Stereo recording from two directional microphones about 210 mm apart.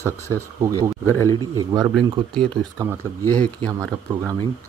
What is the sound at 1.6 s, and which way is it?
Speech, 15° right (ahead or behind).